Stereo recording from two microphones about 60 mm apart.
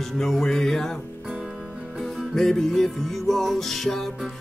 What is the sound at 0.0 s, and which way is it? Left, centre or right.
Music, centre.